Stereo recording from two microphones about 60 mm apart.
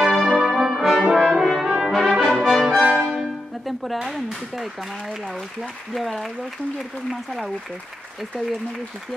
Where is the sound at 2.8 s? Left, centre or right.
Centre.